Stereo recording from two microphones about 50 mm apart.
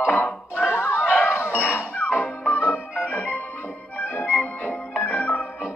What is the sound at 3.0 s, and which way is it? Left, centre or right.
Music, left.